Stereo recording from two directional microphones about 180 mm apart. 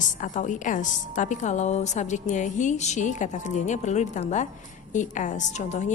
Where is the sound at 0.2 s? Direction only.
45° left (ahead or behind).